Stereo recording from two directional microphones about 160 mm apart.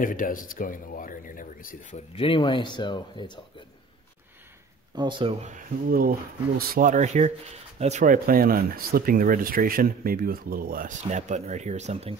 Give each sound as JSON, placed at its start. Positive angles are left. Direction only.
{"t": 0.0, "sound": "speech", "side_deg": 60}
{"t": 2.1, "sound": "speech", "side_deg": 35}
{"t": 4.9, "sound": "speech", "side_deg": -30}
{"t": 5.4, "sound": "speech", "side_deg": -55}